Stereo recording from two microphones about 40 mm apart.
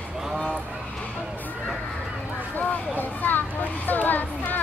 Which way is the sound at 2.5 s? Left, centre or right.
Left.